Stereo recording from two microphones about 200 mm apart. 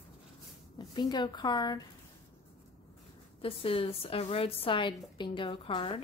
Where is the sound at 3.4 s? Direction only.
30° left (ahead or behind).